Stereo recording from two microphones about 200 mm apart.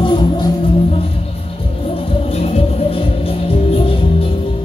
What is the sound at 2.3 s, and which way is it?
Music, 30° left (ahead or behind).